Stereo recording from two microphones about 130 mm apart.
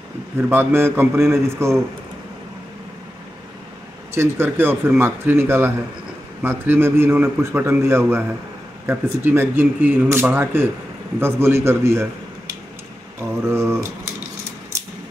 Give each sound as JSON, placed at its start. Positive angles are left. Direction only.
{"t": 0.4, "sound": "a man's voice", "side_deg": -20}
{"t": 4.1, "sound": "a man's voice", "side_deg": -20}
{"t": 13.4, "sound": "a man's voice", "side_deg": -20}